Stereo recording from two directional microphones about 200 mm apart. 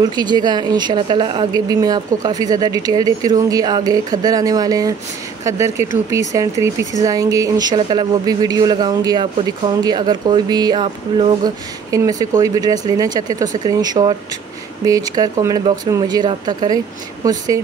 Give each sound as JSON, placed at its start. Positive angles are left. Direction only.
{"t": 0.0, "sound": "speech", "side_deg": -20}